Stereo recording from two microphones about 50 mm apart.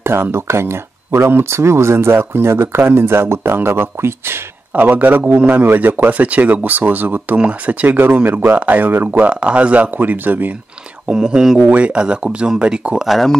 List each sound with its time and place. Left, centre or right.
0.0 s speech: right
4.7 s a man's voice: right
9.3 s a man's voice: right
11.1 s speech: centre
11.6 s speech: right
13.0 s speech: centre